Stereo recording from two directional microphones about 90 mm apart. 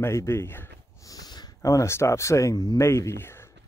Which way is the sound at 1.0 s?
45° left (ahead or behind).